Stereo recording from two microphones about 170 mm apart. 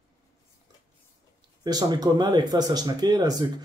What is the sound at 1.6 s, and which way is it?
Speech, 25° right (ahead or behind).